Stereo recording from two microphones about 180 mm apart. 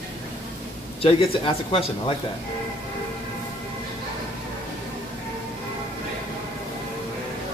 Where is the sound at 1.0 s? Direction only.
30° left (ahead or behind).